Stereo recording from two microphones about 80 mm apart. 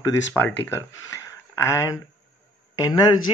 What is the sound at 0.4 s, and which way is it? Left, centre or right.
A man's voice, left.